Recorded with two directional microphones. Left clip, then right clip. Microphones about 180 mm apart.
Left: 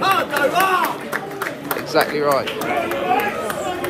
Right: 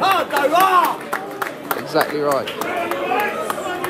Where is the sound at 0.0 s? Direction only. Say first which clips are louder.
Right 1 dB; 60° right (ahead or behind).